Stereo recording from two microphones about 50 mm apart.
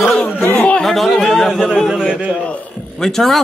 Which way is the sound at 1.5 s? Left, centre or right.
Centre.